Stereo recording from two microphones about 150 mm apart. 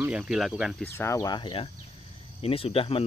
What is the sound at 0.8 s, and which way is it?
Speech, 15° left (ahead or behind).